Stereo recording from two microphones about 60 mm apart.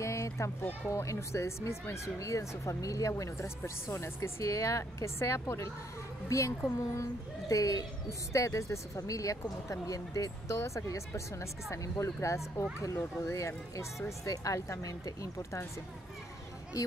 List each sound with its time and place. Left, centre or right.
0.0 s music: left
0.8 s a woman's voice: left
6.8 s speech: left
8.3 s speech: left
10.5 s speech: left